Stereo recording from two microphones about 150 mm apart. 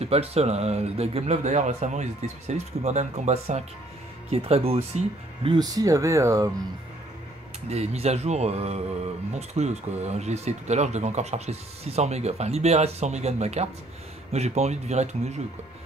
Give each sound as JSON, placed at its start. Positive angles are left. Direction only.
{"t": 0.0, "sound": "speech", "side_deg": -45}
{"t": 5.6, "sound": "speech", "side_deg": -25}
{"t": 7.6, "sound": "speech", "side_deg": -45}